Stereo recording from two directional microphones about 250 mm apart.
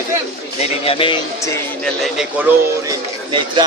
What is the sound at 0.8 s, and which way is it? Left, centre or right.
Speech, left.